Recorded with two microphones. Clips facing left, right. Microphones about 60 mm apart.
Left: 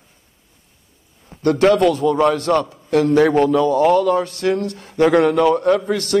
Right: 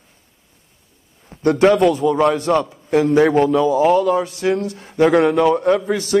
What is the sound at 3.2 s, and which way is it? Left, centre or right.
Speech, centre.